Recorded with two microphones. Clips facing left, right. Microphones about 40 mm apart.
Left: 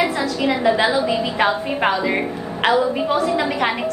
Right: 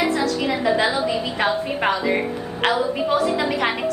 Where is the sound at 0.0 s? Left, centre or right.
Centre.